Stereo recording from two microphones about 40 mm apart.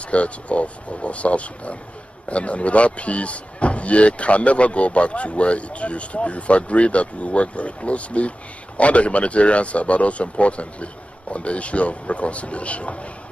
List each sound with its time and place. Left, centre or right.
0.1 s speech: left